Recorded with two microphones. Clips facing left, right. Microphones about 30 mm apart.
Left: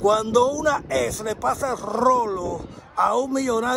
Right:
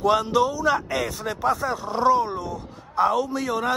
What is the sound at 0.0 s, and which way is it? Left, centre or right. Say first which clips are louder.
Speech: left 2 dB; right.